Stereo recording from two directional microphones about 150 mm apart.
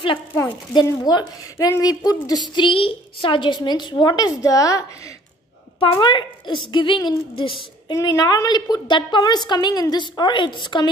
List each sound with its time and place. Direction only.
0.4 s a woman's voice: 20° left (ahead or behind)